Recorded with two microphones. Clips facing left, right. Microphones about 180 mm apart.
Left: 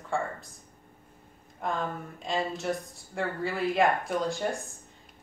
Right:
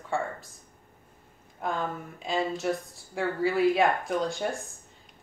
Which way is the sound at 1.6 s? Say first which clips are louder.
Right 1 dB; centre (ahead or behind).